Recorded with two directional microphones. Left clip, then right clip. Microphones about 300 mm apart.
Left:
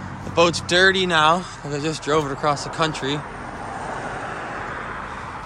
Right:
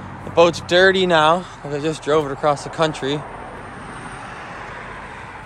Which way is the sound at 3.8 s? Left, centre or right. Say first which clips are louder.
Left 6 dB; left.